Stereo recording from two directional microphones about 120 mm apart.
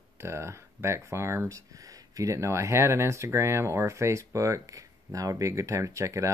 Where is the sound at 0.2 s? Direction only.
20° right (ahead or behind).